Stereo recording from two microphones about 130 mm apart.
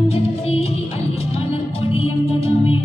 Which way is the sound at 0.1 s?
50° left (ahead or behind).